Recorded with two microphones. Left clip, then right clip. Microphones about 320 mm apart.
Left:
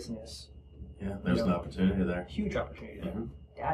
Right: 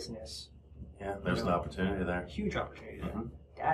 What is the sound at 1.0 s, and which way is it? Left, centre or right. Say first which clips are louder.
A man's voice: left 2 dB; centre.